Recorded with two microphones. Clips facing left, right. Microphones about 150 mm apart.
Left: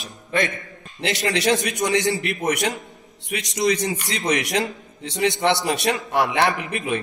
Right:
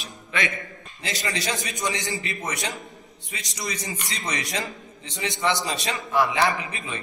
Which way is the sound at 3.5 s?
70° left (ahead or behind).